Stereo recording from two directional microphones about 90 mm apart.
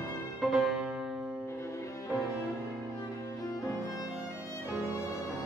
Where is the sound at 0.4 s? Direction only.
5° right (ahead or behind).